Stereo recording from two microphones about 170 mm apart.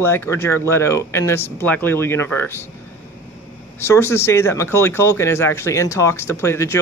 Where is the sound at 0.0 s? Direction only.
15° left (ahead or behind).